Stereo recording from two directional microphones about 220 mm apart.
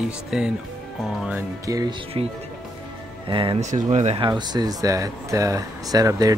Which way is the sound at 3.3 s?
25° right (ahead or behind).